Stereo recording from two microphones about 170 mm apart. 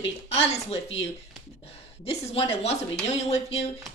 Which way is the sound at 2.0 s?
35° left (ahead or behind).